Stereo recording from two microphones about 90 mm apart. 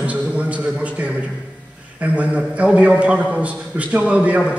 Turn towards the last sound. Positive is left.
turn(degrees=-15)  # may be behind; listen again after turning